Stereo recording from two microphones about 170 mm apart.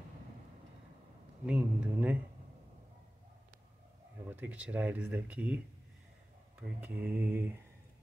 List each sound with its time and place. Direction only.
1.4 s speech: 5° right (ahead or behind)
4.3 s speech: 10° right (ahead or behind)
6.6 s speech: 10° right (ahead or behind)